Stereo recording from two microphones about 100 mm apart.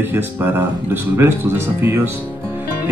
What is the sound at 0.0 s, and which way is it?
Speech, 20° right (ahead or behind).